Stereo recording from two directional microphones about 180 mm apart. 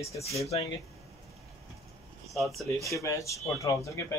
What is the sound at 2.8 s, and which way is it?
Speech, 15° left (ahead or behind).